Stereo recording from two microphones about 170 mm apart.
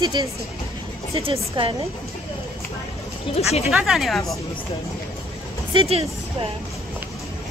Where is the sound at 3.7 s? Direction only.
Centre (ahead or behind).